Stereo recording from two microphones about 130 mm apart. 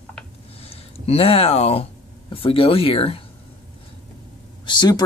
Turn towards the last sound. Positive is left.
turn(degrees=35)  # may be behind; listen again after turning